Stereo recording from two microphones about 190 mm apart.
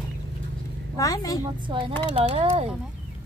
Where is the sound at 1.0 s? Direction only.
20° left (ahead or behind).